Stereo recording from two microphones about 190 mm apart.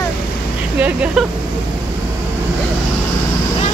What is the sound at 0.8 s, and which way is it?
Speech, 5° right (ahead or behind).